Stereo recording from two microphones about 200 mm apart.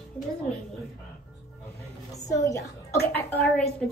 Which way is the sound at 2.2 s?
15° left (ahead or behind).